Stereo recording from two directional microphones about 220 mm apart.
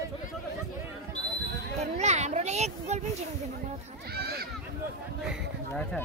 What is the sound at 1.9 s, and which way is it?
Speech, 30° right (ahead or behind).